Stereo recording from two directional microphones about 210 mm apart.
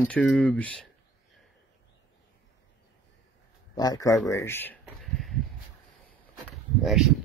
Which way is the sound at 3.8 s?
15° left (ahead or behind).